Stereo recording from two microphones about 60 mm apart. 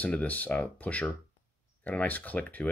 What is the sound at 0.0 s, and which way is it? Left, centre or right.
Speech, left.